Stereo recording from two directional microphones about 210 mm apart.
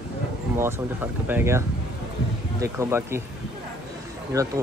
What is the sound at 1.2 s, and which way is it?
Speech, 10° right (ahead or behind).